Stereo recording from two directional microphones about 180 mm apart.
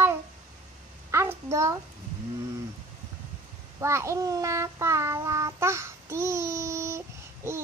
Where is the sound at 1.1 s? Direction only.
15° right (ahead or behind).